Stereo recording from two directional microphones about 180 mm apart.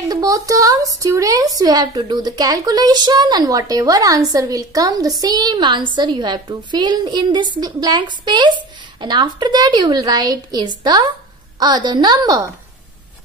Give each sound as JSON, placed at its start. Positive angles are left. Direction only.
{"t": 0.1, "sound": "a woman's voice", "side_deg": -20}